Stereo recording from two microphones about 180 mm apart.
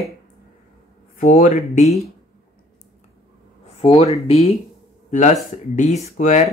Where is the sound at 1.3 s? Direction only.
50° left (ahead or behind).